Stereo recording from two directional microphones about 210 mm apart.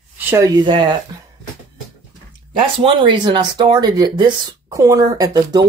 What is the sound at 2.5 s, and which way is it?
Speech, 25° right (ahead or behind).